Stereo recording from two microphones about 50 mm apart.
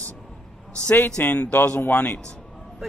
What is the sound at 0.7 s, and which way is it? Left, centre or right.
A man's voice, left.